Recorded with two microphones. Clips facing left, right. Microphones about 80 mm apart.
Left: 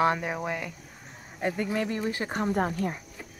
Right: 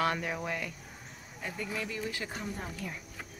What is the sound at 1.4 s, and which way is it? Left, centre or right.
Speech, left.